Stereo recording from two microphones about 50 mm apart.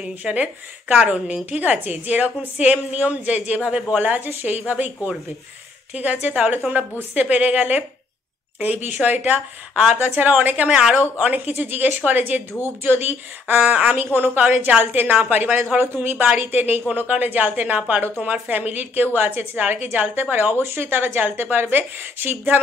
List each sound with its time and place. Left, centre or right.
0.0 s a woman's voice: right
4.4 s a woman's voice: right
10.7 s a woman's voice: centre
11.5 s a woman's voice: right
15.8 s a woman's voice: right